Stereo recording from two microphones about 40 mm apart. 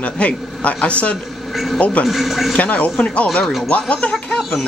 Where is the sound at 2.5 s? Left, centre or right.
Left.